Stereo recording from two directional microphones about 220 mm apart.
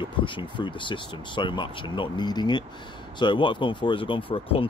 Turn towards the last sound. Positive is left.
turn(degrees=25)  # may be behind; listen again after turning